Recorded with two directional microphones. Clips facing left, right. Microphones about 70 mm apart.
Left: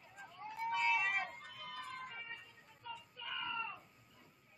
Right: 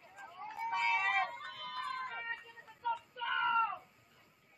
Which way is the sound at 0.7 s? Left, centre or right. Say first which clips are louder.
Right 3 dB; right.